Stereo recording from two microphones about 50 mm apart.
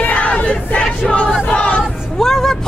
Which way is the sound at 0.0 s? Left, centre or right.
Left.